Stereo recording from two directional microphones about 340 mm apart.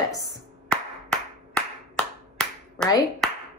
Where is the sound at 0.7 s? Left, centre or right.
Centre.